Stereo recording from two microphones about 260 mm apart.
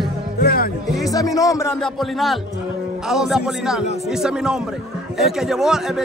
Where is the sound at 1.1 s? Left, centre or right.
Centre.